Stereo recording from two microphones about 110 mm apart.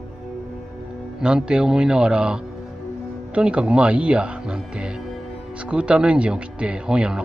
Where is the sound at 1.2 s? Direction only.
10° right (ahead or behind).